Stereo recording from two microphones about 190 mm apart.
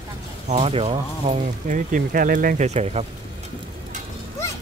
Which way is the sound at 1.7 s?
45° right (ahead or behind).